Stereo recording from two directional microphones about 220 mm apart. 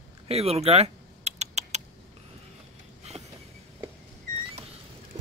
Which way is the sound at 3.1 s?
30° right (ahead or behind).